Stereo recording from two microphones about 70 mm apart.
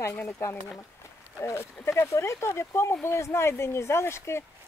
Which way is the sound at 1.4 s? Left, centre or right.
Left.